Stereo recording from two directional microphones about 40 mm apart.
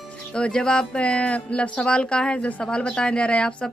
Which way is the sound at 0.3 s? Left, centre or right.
Left.